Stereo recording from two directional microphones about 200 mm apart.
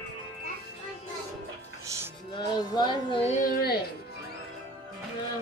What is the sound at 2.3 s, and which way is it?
Speech, 25° left (ahead or behind).